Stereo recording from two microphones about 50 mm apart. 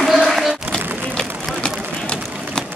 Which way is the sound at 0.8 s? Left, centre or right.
Right.